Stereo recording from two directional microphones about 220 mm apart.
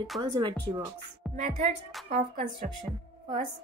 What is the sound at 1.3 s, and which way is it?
Speech, 30° right (ahead or behind).